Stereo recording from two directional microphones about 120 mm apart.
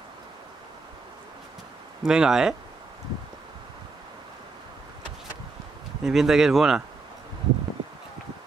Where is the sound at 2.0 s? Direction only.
5° right (ahead or behind).